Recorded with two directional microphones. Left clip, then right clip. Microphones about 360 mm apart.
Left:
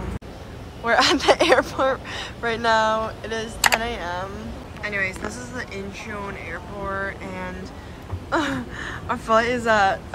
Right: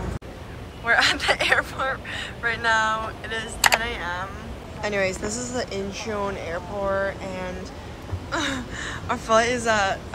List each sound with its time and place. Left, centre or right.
0.8 s a woman's voice: centre
4.8 s speech: centre